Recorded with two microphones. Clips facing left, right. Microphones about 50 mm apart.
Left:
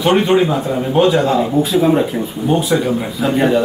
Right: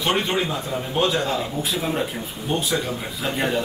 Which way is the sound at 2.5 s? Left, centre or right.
Centre.